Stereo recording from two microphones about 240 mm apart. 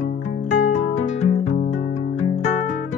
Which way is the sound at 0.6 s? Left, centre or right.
Left.